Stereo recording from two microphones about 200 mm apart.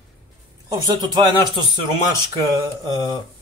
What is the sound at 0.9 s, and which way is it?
Speech, 20° right (ahead or behind).